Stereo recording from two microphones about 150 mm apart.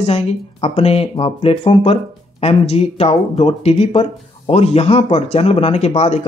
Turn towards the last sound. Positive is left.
turn(degrees=45)  # may be behind; listen again after turning